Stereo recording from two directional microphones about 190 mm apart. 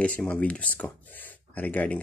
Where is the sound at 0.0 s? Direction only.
5° left (ahead or behind).